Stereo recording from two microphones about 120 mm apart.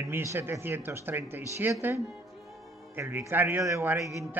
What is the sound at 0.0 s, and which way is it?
A man's voice, 25° right (ahead or behind).